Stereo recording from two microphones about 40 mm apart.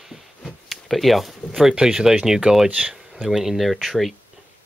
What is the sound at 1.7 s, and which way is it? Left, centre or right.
Speech, centre.